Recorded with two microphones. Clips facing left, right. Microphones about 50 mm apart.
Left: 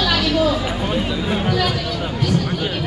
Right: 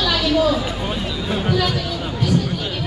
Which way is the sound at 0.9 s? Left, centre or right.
Centre.